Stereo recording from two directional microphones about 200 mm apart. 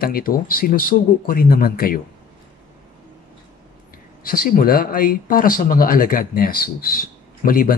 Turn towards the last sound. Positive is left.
turn(degrees=45)  # may be behind; listen again after turning